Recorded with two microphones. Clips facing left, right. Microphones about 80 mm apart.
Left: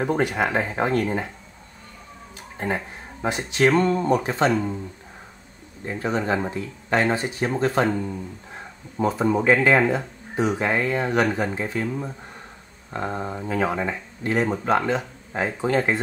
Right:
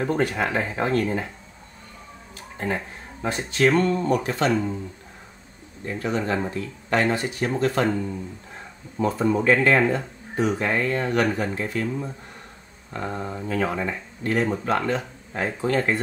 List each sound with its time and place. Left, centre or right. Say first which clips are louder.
0.0 s speech: left 1 dB; centre
2.5 s speech: left 1 dB; centre
3.9 s speech: left 2 dB; left
4.5 s speech: even; centre
6.2 s speech: left 1 dB; centre